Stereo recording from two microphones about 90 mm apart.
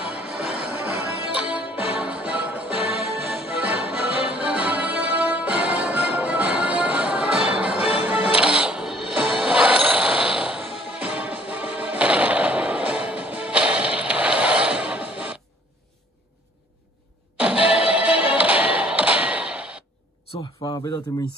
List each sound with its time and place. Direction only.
0.0 s music: 10° right (ahead or behind)
17.7 s music: 10° right (ahead or behind)
20.6 s a sound: 85° left